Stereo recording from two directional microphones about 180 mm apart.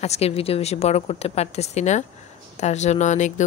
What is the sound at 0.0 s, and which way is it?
Speech, 35° left (ahead or behind).